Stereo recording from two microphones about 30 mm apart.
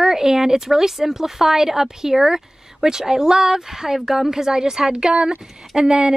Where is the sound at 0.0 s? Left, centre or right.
Centre.